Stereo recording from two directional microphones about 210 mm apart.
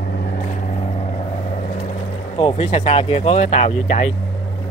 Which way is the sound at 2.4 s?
25° left (ahead or behind).